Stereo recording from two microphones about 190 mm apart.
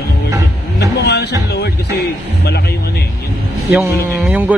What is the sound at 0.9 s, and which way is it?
Speech, 60° left (ahead or behind).